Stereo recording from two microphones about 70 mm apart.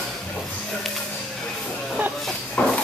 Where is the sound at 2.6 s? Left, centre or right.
Left.